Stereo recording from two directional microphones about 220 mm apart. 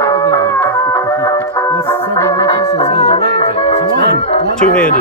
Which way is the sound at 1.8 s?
15° left (ahead or behind).